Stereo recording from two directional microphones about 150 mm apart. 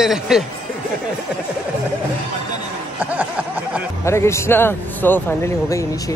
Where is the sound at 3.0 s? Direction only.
10° right (ahead or behind).